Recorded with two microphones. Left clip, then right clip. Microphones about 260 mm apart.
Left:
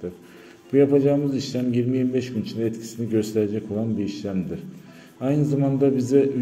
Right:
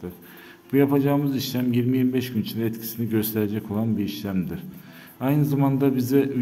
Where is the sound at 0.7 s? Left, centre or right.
Centre.